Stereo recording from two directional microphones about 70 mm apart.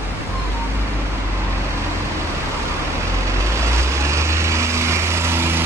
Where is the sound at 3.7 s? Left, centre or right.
Right.